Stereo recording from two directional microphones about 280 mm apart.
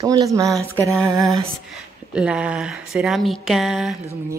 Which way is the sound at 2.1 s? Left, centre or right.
Centre.